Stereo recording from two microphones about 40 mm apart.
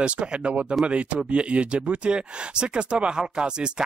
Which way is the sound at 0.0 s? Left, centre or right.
Right.